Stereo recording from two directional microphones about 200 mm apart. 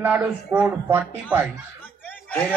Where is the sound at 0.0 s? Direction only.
5° right (ahead or behind).